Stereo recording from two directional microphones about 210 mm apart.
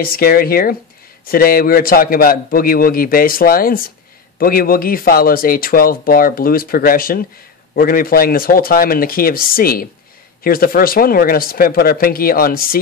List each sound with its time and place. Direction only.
0.0 s speech: 45° left (ahead or behind)